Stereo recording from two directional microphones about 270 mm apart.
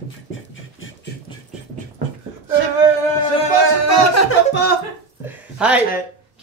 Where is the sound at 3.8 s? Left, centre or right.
Left.